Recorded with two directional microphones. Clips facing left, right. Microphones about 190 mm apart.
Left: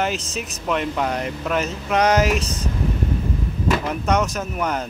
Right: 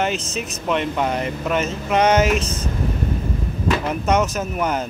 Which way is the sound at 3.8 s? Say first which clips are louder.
Right 2 dB; 5° right (ahead or behind).